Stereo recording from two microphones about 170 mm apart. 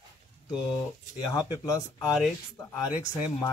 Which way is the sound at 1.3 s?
20° left (ahead or behind).